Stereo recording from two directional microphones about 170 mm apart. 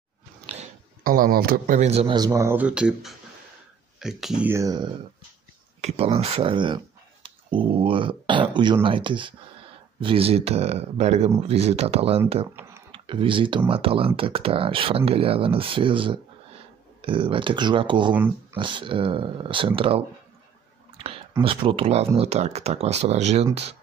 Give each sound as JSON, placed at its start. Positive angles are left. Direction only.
{"t": 1.0, "sound": "speech", "side_deg": -55}
{"t": 1.8, "sound": "speech", "side_deg": -40}
{"t": 2.1, "sound": "speech", "side_deg": -20}
{"t": 4.5, "sound": "speech", "side_deg": -20}
{"t": 5.8, "sound": "speech", "side_deg": -40}
{"t": 18.1, "sound": "speech", "side_deg": -10}
{"t": 18.6, "sound": "speech", "side_deg": -30}
{"t": 21.4, "sound": "speech", "side_deg": -30}